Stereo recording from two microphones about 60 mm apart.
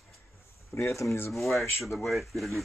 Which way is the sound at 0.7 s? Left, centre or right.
Left.